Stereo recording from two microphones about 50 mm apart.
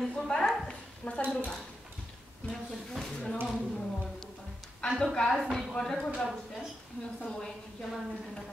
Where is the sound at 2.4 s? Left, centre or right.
Left.